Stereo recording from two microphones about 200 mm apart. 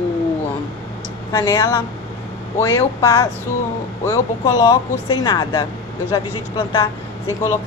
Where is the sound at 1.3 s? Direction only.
15° left (ahead or behind).